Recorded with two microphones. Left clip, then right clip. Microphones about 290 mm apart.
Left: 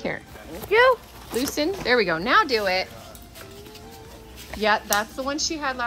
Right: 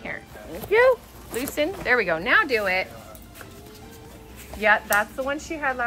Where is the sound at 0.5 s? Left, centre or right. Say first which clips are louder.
Left 1 dB; centre.